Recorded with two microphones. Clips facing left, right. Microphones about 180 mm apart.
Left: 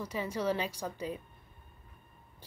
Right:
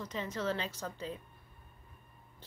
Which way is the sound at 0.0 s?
10° left (ahead or behind).